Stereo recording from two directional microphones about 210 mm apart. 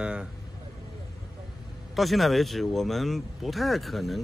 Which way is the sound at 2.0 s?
Centre (ahead or behind).